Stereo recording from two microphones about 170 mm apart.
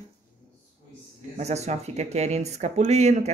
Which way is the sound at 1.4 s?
40° right (ahead or behind).